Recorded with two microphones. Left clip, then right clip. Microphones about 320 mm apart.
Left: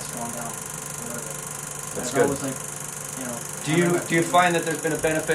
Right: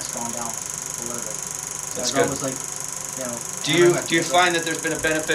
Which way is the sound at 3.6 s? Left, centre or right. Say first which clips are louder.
Right 5 dB; left.